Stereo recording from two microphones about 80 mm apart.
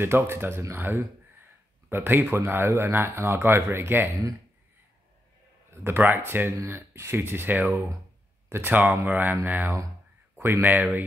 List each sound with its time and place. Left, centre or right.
0.0 s speech: right
5.7 s speech: right